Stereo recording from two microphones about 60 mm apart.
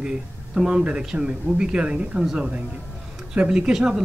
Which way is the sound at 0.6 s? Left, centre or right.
Centre.